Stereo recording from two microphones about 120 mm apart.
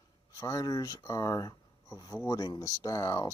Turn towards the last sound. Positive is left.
turn(degrees=25)  # may be behind; listen again after turning